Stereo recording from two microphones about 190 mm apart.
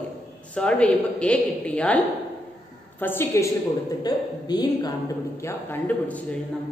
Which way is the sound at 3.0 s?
15° left (ahead or behind).